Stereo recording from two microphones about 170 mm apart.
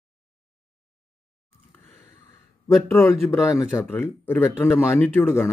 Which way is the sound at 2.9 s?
15° left (ahead or behind).